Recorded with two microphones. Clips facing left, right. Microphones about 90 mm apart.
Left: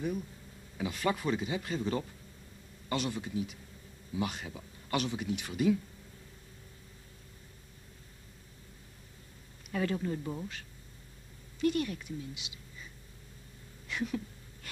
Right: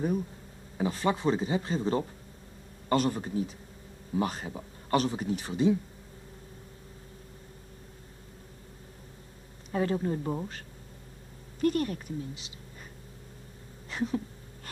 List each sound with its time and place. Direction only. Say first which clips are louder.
0.7 s speech: right 4 dB; 35° right (ahead or behind)
9.7 s speech: right 4 dB; 30° right (ahead or behind)
11.6 s speech: right 3 dB; 40° right (ahead or behind)
13.8 s a sound: right 4 dB; 35° right (ahead or behind)